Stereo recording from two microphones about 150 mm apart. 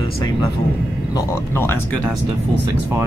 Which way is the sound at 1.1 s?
15° left (ahead or behind).